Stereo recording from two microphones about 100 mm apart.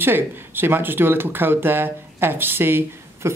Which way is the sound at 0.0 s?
20° right (ahead or behind).